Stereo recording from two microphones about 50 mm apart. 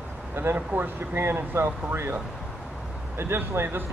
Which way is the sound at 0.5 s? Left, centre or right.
Right.